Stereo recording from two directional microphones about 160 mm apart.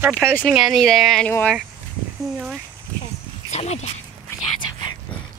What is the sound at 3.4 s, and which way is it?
Speech, 45° left (ahead or behind).